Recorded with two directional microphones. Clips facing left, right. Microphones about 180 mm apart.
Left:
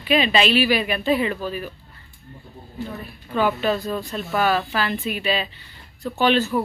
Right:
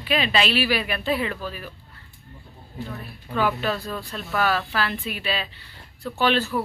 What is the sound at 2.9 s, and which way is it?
Speech, 20° left (ahead or behind).